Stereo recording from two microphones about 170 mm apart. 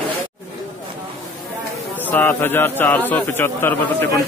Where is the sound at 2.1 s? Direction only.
10° left (ahead or behind).